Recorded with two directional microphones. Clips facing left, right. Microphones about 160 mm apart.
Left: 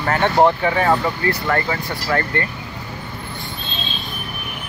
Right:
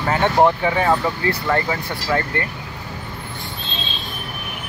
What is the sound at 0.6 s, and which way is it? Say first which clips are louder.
Speech: left 1 dB; 15° right (ahead or behind).